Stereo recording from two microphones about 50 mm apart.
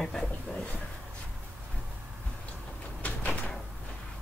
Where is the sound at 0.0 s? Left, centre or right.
Centre.